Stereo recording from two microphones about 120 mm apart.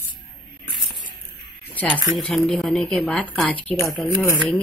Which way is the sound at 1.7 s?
10° left (ahead or behind).